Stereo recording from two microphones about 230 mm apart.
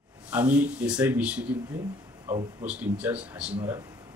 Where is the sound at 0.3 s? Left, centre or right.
Centre.